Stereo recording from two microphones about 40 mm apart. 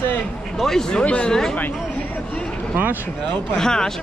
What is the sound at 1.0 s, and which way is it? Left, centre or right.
Speech, left.